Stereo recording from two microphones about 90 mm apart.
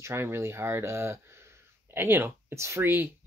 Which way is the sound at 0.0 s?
30° right (ahead or behind).